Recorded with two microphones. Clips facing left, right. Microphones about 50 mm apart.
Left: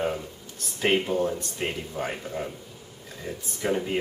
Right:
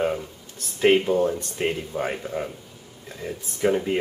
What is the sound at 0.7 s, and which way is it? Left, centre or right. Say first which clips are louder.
Speech: right 5 dB; centre.